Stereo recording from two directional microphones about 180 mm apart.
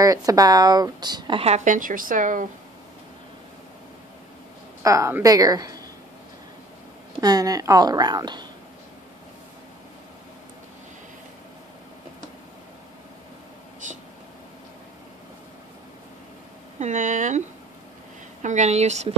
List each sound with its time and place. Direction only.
0.0 s a woman's voice: 20° right (ahead or behind); by 2.4 s 45° right (ahead or behind)
4.8 s a woman's voice: 15° right (ahead or behind)
7.2 s a woman's voice: 20° right (ahead or behind)
13.8 s a sound: 45° right (ahead or behind)
16.8 s speech: 45° right (ahead or behind)
18.4 s a woman's voice: 40° right (ahead or behind)